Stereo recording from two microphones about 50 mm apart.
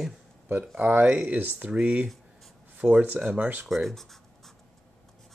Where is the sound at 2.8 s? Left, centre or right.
Right.